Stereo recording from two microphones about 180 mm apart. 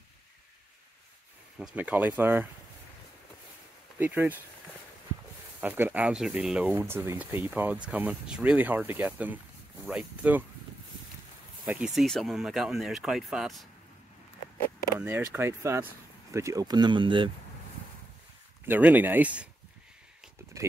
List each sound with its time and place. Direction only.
1.8 s speech: 10° right (ahead or behind)
4.0 s speech: 10° right (ahead or behind)
5.6 s speech: 10° right (ahead or behind)
11.6 s speech: 5° right (ahead or behind)
15.0 s speech: 10° right (ahead or behind); by 17.3 s 25° right (ahead or behind)
18.7 s speech: 10° right (ahead or behind)